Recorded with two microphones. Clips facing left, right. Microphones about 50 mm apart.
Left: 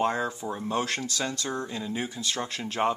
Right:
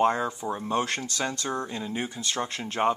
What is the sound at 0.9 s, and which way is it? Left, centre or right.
Speech, right.